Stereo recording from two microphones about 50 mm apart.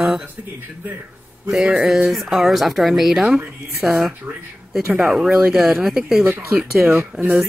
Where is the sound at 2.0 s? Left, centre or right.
Centre.